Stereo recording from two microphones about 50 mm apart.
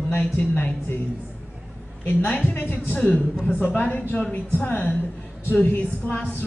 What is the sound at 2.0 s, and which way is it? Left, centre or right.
Music, left.